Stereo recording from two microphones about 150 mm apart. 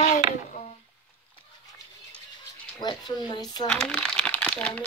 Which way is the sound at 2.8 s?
30° left (ahead or behind).